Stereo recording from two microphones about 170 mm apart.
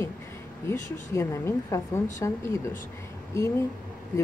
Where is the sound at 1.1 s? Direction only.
15° left (ahead or behind).